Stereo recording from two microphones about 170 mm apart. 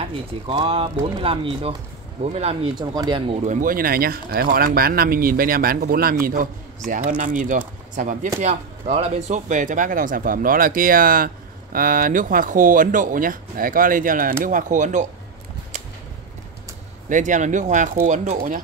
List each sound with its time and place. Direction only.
0.0 s speech: 30° right (ahead or behind)
2.7 s speech: 25° right (ahead or behind)
3.4 s speech: 55° right (ahead or behind)
17.1 s speech: 45° right (ahead or behind)